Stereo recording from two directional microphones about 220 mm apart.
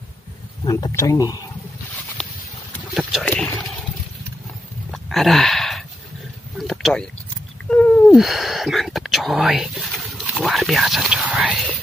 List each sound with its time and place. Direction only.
0.7 s speech: 15° left (ahead or behind)
2.7 s boat: centre (ahead or behind)
4.9 s a sound: centre (ahead or behind)
7.7 s speech: 5° left (ahead or behind)